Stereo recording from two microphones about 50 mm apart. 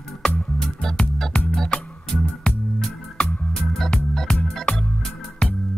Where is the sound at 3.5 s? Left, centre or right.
Centre.